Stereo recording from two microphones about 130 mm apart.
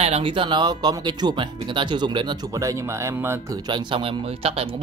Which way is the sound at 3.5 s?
35° right (ahead or behind).